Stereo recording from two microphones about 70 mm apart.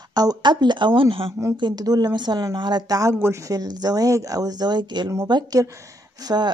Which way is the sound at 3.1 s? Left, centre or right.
Right.